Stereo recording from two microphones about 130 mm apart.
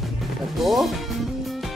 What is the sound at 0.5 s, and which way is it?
Music, centre (ahead or behind).